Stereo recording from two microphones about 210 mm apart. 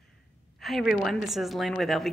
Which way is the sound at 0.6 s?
Centre (ahead or behind).